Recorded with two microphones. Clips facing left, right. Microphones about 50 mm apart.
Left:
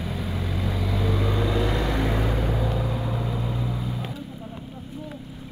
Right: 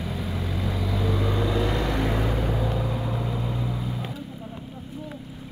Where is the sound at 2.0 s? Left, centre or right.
Centre.